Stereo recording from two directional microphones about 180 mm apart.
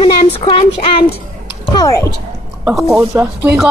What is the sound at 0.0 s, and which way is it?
Speech, 30° left (ahead or behind).